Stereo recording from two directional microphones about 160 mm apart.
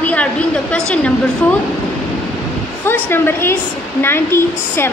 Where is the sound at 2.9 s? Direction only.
15° left (ahead or behind).